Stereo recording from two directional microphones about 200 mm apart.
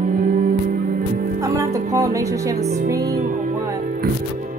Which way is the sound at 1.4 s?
15° right (ahead or behind).